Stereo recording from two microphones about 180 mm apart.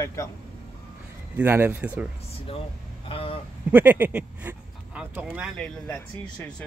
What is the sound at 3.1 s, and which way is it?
Speech, 30° left (ahead or behind).